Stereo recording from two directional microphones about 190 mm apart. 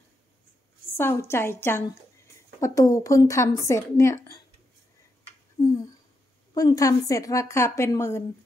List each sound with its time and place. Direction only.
0.9 s a woman's voice: 15° left (ahead or behind)
5.6 s a sound: 15° left (ahead or behind)
6.5 s a woman's voice: 20° left (ahead or behind)